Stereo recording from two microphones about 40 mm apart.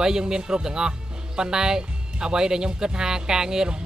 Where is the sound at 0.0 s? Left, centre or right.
Centre.